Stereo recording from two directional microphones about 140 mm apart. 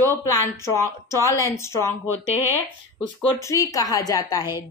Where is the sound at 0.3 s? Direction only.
20° left (ahead or behind).